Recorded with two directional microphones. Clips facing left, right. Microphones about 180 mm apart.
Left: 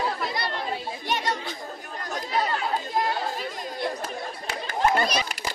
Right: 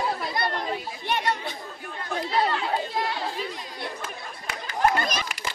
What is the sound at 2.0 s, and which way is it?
Chatter, 45° left (ahead or behind).